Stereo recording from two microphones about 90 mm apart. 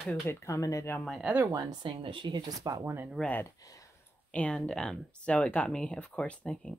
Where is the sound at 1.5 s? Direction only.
45° right (ahead or behind).